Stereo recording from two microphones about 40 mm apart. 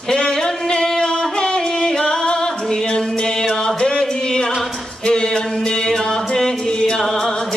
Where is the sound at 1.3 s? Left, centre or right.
Centre.